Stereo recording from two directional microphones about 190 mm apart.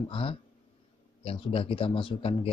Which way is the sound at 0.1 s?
30° left (ahead or behind).